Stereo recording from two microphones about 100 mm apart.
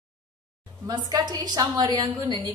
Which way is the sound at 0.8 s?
40° right (ahead or behind).